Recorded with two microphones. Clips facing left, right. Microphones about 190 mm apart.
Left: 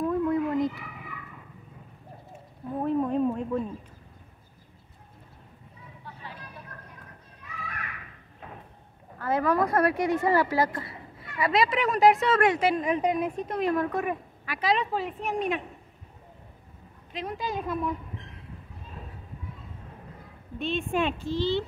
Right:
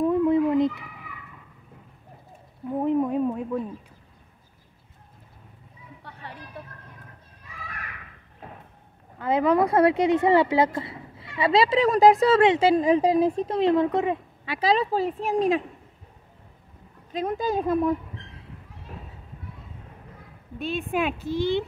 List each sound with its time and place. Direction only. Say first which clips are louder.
0.0 s a sound: right 5 dB; 20° right (ahead or behind)
2.8 s a sound: right 2 dB; 15° right (ahead or behind)
6.1 s vehicle: left 1 dB; 70° right (ahead or behind)
9.2 s speech: right 4 dB; 20° right (ahead or behind)
17.1 s a woman's voice: right 7 dB; 45° right (ahead or behind)
20.5 s speech: right 1 dB; 5° right (ahead or behind)